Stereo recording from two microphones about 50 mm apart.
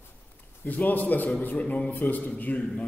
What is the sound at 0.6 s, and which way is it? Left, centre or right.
A man's voice, left.